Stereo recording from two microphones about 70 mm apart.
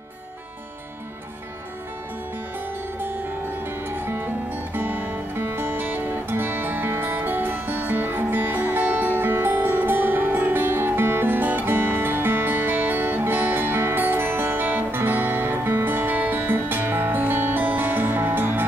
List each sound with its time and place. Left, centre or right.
3.0 s music: right